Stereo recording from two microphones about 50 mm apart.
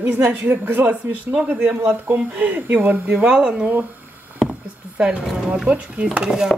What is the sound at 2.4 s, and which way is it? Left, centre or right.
Speech, right.